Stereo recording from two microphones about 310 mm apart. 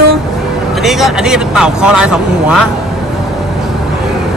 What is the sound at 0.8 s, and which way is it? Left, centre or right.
Speech, centre.